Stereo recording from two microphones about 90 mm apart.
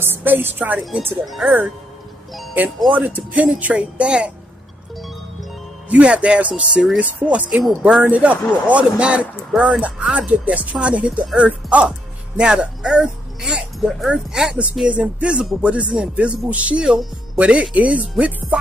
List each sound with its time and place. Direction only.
0.0 s a woman's voice: 25° right (ahead or behind)
2.9 s music: 15° right (ahead or behind)
5.9 s music: 15° right (ahead or behind)
9.5 s speech: 5° right (ahead or behind)
9.8 s music: 15° right (ahead or behind)